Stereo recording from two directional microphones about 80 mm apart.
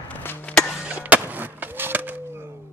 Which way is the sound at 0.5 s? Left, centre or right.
Centre.